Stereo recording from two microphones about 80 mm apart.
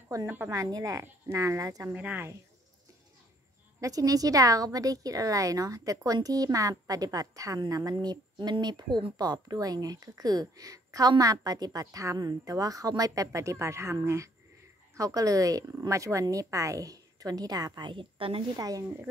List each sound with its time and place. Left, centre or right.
0.1 s a woman's voice: right
1.0 s speech: right
2.0 s speech: centre
3.8 s a woman's voice: right
18.6 s a woman's voice: right